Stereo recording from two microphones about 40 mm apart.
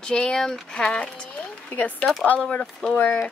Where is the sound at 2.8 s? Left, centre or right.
Left.